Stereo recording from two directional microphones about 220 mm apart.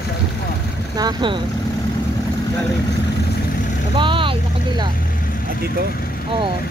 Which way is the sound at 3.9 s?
20° right (ahead or behind).